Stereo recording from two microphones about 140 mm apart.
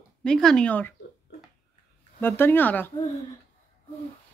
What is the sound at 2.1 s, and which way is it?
Speech, 15° left (ahead or behind).